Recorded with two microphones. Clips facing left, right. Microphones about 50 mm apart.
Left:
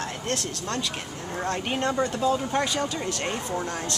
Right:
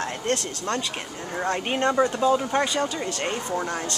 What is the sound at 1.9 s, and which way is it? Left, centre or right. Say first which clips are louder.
Speech: right 6 dB; centre.